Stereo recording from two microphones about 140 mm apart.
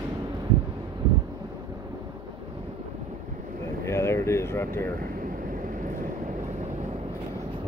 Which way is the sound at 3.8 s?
20° left (ahead or behind).